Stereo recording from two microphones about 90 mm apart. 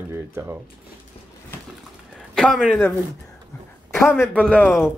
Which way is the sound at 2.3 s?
5° left (ahead or behind).